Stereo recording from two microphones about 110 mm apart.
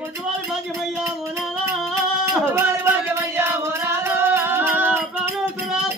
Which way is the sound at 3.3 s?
25° right (ahead or behind).